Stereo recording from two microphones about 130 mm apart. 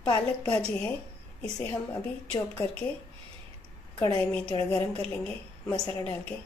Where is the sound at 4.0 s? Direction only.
25° left (ahead or behind).